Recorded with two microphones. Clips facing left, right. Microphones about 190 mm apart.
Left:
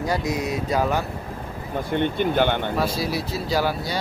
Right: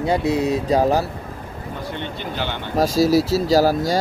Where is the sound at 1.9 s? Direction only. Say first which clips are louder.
Left 9 dB; 55° left (ahead or behind).